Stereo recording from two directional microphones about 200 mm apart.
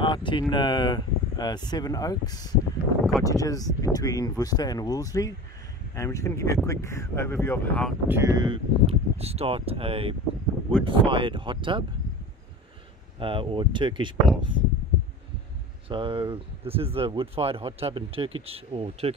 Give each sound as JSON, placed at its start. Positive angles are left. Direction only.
{"t": 0.0, "sound": "speech", "side_deg": 25}
{"t": 8.1, "sound": "speech", "side_deg": -15}
{"t": 13.2, "sound": "speech", "side_deg": -25}
{"t": 15.9, "sound": "speech", "side_deg": -25}